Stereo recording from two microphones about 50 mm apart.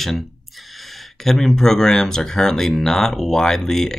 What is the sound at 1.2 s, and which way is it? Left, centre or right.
Speech, centre.